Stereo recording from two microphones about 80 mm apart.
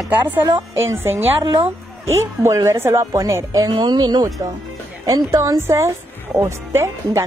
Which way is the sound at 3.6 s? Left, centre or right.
Right.